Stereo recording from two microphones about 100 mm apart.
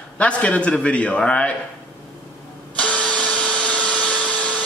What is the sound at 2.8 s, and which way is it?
Vacuum cleaner, 10° left (ahead or behind).